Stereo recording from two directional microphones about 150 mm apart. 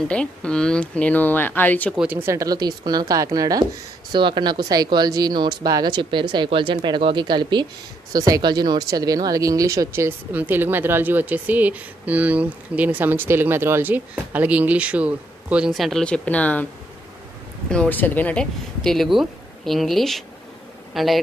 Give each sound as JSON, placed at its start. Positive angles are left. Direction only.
{"t": 0.1, "sound": "speech", "side_deg": 5}
{"t": 2.0, "sound": "a woman's voice", "side_deg": -10}
{"t": 17.6, "sound": "speech", "side_deg": 10}